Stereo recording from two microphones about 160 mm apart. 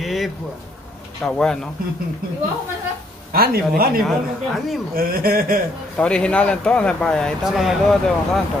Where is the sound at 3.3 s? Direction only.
70° right (ahead or behind).